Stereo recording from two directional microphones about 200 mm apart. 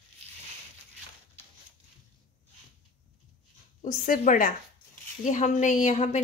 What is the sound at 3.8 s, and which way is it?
A woman's voice, 40° left (ahead or behind).